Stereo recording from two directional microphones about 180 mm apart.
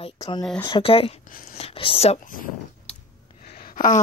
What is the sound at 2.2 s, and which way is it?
Speech, 50° left (ahead or behind).